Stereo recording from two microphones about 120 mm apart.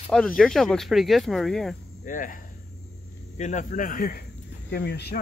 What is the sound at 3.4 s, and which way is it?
Speech, 90° left.